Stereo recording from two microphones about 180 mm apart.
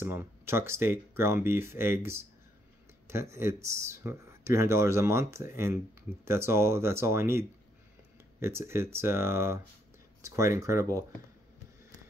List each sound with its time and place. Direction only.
0.0 s speech: 15° right (ahead or behind)